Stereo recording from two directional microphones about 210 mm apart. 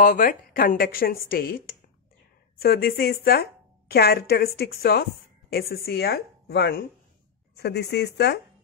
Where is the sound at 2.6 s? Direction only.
50° left (ahead or behind).